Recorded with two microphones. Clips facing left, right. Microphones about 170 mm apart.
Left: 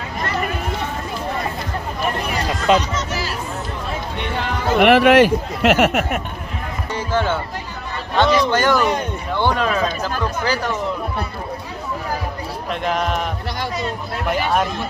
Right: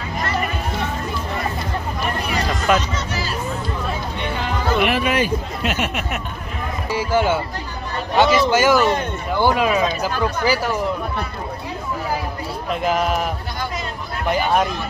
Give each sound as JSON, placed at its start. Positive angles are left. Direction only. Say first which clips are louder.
{"t": 2.7, "sound": "speech", "louder": "left 3 dB", "side_deg": 25}
{"t": 4.7, "sound": "speech", "louder": "left 9 dB", "side_deg": 70}
{"t": 6.9, "sound": "a man's voice", "louder": "right 2 dB", "side_deg": -10}
{"t": 12.6, "sound": "a man's voice", "louder": "right 2 dB", "side_deg": -5}